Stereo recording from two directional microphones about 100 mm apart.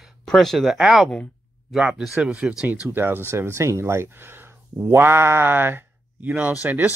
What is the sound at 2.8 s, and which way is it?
Speech, 20° right (ahead or behind).